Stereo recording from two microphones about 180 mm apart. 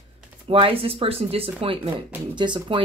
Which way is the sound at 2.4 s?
25° right (ahead or behind).